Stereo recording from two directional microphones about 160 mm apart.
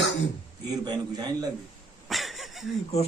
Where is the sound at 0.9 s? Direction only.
25° right (ahead or behind).